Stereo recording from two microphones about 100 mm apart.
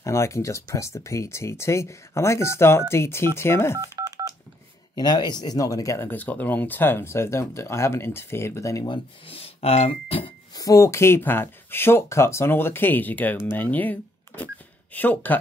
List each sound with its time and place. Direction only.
0.0 s speech: 30° left (ahead or behind)
3.8 s telephone dialing: 35° right (ahead or behind)
4.9 s speech: 45° left (ahead or behind)
5.9 s speech: 20° left (ahead or behind)
9.3 s speech: 80° left
10.5 s speech: 35° left (ahead or behind); by 13.9 s 15° left (ahead or behind)
14.4 s a sound: 15° left (ahead or behind)